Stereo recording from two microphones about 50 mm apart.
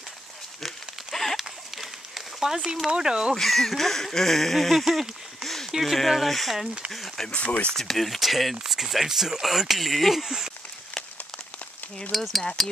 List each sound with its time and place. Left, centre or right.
0.6 s a sound: centre
3.0 s speech: centre
3.3 s speech: centre
7.2 s speech: left
7.7 s speech: centre
12.1 s speech: centre